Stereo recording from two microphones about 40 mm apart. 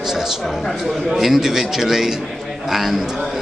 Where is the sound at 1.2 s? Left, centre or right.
Centre.